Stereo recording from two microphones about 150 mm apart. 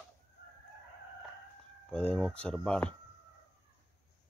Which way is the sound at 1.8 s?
5° left (ahead or behind).